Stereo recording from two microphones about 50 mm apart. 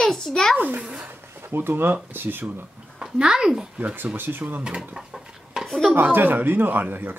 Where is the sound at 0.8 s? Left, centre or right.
Centre.